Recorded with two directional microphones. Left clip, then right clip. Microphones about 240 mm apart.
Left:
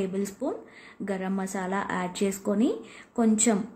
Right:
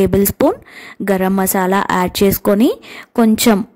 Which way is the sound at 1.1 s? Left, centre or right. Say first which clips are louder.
Right 16 dB; right.